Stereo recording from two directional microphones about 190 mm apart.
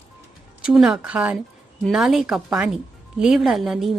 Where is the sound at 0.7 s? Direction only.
5° right (ahead or behind).